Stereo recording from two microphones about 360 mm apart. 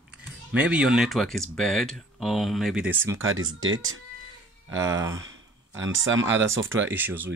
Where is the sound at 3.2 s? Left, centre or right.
Right.